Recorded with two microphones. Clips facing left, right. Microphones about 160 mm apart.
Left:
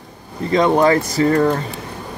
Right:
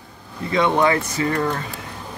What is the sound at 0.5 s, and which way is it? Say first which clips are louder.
Speech: left 4 dB; 40° left (ahead or behind).